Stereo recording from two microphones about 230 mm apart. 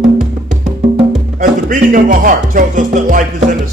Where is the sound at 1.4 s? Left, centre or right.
Right.